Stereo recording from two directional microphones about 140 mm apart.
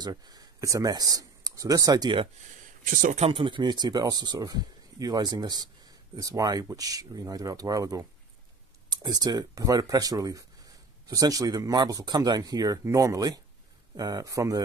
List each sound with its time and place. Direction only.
0.0 s speech: 30° right (ahead or behind)
2.8 s speech: 75° right (ahead or behind)
3.2 s speech: 40° right (ahead or behind); by 14.6 s 25° right (ahead or behind)